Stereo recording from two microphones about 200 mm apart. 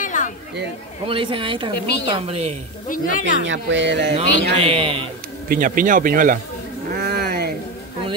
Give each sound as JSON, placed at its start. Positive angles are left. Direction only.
{"t": 0.0, "sound": "chatter", "side_deg": 40}
{"t": 1.0, "sound": "speech", "side_deg": -25}
{"t": 1.7, "sound": "a woman's voice", "side_deg": 60}
{"t": 2.1, "sound": "a woman's voice", "side_deg": -30}
{"t": 2.9, "sound": "speech", "side_deg": 40}
{"t": 3.4, "sound": "speech", "side_deg": -65}
{"t": 4.6, "sound": "speech", "side_deg": -30}
{"t": 5.5, "sound": "speech", "side_deg": -40}
{"t": 6.9, "sound": "a sound", "side_deg": -50}